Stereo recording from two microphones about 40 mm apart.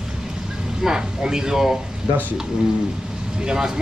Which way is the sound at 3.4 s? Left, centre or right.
Centre.